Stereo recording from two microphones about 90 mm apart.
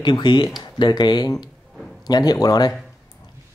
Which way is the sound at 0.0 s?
60° left (ahead or behind).